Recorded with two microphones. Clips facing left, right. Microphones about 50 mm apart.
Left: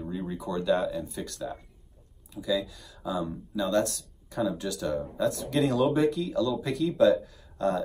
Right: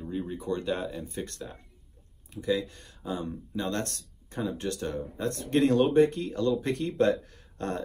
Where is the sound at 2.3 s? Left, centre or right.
Right.